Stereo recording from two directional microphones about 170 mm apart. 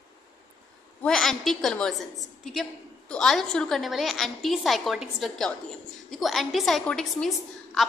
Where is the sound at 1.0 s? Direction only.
5° left (ahead or behind).